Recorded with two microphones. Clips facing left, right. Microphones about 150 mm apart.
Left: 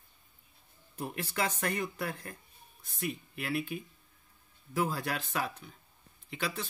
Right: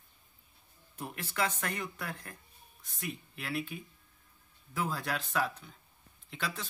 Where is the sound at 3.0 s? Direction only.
10° left (ahead or behind).